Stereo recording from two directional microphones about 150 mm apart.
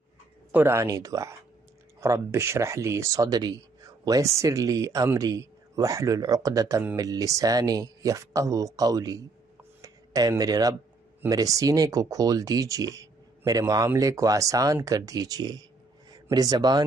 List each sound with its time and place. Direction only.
0.5 s speech: 15° right (ahead or behind)